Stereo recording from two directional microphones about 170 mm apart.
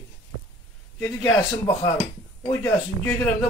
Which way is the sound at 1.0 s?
15° left (ahead or behind).